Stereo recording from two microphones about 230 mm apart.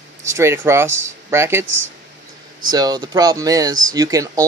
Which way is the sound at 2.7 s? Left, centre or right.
Centre.